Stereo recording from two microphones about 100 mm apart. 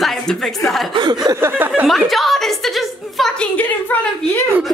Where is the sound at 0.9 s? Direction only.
55° right (ahead or behind).